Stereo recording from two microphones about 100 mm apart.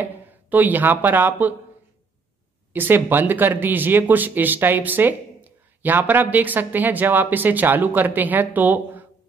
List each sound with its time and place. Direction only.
0.0 s speech: 15° right (ahead or behind)
2.7 s speech: 20° right (ahead or behind)